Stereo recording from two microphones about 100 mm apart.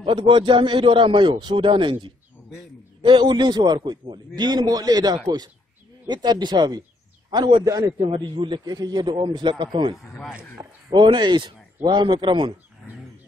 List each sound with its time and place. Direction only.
0.3 s a man's voice: 55° right (ahead or behind)
8.0 s a man's voice: 60° right (ahead or behind)
10.0 s speech: 10° left (ahead or behind)
10.9 s a man's voice: 50° right (ahead or behind)